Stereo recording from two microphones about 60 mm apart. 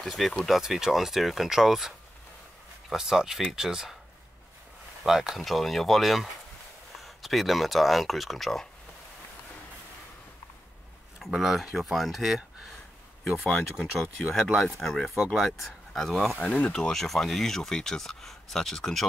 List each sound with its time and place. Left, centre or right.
0.0 s speech: centre
5.0 s speech: centre
11.1 s speech: centre
13.5 s speech: left
14.2 s speech: centre
16.3 s speech: centre
16.9 s speech: centre